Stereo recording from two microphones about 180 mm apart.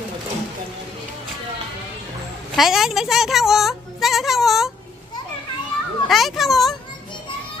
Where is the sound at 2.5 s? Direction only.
Centre (ahead or behind).